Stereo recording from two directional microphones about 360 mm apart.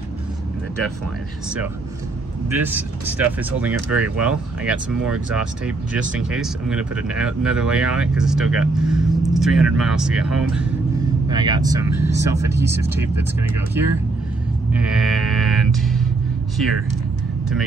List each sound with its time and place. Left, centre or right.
2.6 s speech: centre
14.7 s speech: centre